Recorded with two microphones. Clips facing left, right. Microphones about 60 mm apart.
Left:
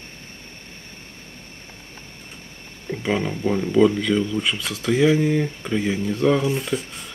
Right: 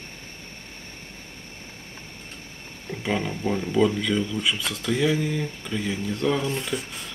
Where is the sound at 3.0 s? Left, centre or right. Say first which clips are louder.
Left 3 dB; centre.